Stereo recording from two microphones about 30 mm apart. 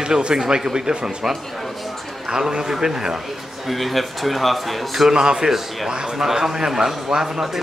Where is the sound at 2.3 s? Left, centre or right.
Right.